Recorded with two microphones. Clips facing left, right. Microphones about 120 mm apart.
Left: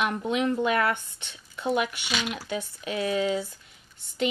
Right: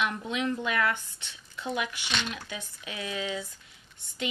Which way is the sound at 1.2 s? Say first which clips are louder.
Left 6 dB; 55° left (ahead or behind).